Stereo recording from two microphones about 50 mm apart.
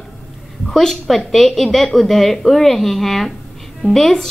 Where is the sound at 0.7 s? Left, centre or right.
Centre.